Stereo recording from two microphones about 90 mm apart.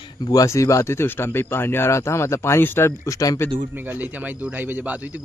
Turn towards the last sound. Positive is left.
turn(degrees=-15)  # may be behind; listen again after turning